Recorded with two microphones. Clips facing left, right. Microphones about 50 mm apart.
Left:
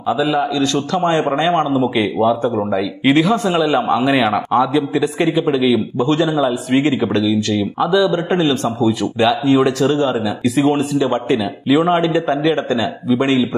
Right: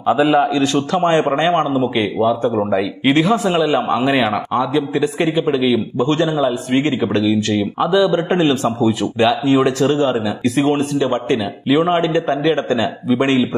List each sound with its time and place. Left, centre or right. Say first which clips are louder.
0.3 s a man's voice: right 2 dB; right
0.9 s a man's voice: right 1 dB; centre